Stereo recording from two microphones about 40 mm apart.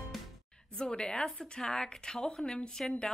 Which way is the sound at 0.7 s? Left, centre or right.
Left.